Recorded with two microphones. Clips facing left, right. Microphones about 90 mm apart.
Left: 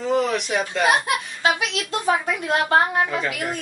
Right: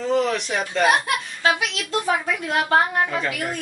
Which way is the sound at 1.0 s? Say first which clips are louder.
Even; 20° left (ahead or behind).